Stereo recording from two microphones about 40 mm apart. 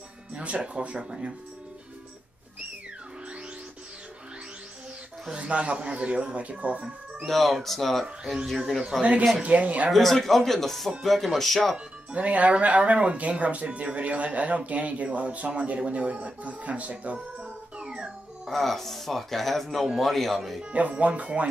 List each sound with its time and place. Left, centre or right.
0.3 s speech: right
5.3 s speech: right
7.2 s speech: centre
8.0 s speech: centre
9.4 s speech: right
9.9 s speech: centre
12.2 s speech: right
18.5 s speech: centre
21.0 s speech: right